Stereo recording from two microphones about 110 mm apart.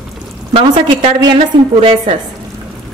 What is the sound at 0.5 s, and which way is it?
A woman's voice, 65° right (ahead or behind).